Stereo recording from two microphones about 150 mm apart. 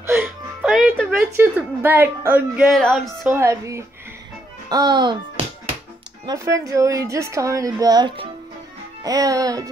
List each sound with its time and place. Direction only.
0.0 s music: 10° right (ahead or behind)
1.3 s speech: 15° right (ahead or behind)
2.7 s music: centre (ahead or behind)
3.3 s a woman's voice: 20° right (ahead or behind)
6.2 s a woman's voice: 20° right (ahead or behind)